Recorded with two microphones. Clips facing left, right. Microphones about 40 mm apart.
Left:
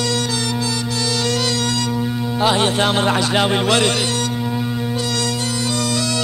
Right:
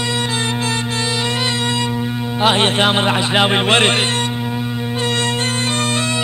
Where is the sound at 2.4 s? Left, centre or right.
Right.